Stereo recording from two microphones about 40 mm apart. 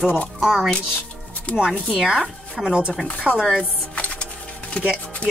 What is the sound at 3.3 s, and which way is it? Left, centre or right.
Speech, right.